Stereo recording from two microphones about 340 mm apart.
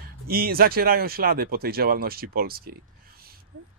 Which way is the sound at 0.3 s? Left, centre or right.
Right.